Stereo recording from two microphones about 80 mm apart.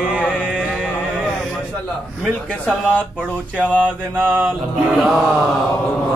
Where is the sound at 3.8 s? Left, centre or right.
Right.